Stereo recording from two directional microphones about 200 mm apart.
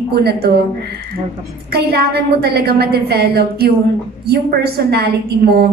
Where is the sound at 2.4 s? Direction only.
50° right (ahead or behind).